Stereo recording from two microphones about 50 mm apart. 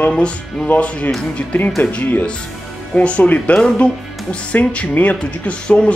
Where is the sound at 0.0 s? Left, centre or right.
Left.